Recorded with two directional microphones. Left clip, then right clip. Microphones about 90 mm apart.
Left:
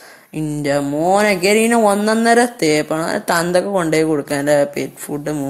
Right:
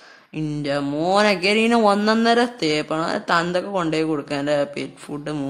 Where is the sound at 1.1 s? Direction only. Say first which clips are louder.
Left 3 dB; 30° left (ahead or behind).